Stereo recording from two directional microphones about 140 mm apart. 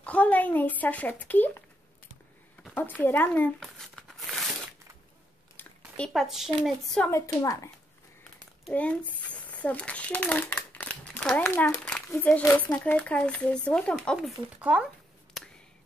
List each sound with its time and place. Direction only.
0.0 s speech: 10° left (ahead or behind)
2.6 s speech: 10° left (ahead or behind)
3.5 s crumpling: centre (ahead or behind)
5.6 s a sound: 15° left (ahead or behind)
5.9 s speech: 5° left (ahead or behind)
7.1 s a woman's voice: 20° left (ahead or behind)
9.3 s a sound: 10° left (ahead or behind)
12.1 s speech: 10° left (ahead or behind); by 14.9 s 10° right (ahead or behind)